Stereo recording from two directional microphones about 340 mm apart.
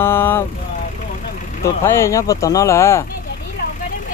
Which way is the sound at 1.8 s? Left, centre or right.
Centre.